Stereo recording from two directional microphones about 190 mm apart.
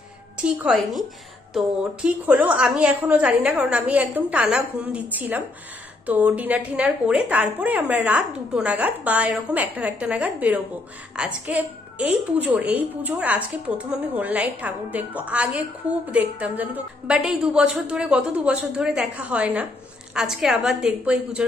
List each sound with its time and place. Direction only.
0.4 s a woman's voice: 5° right (ahead or behind)